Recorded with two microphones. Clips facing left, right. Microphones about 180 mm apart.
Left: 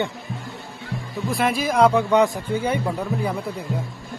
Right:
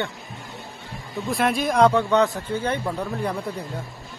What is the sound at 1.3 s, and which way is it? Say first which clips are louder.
Speech: even; centre (ahead or behind).